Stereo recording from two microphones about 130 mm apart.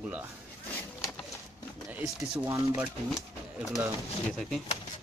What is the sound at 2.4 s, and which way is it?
Speech, 25° right (ahead or behind).